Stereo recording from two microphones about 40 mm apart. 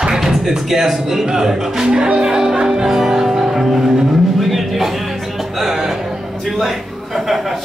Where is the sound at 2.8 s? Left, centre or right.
Centre.